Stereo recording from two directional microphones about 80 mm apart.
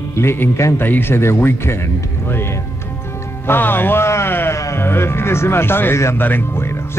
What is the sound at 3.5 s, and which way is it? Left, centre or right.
Speech, left.